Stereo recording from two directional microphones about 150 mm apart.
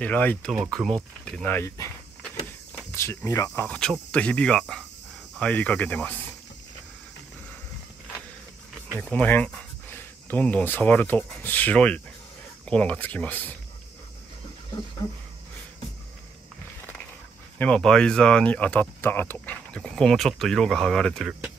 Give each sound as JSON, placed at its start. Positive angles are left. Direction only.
{"t": 0.0, "sound": "speech", "side_deg": 10}
{"t": 0.5, "sound": "speech", "side_deg": 0}
{"t": 3.3, "sound": "speech", "side_deg": 20}
{"t": 3.6, "sound": "speech", "side_deg": 5}
{"t": 9.1, "sound": "speech", "side_deg": 10}
{"t": 17.6, "sound": "speech", "side_deg": 5}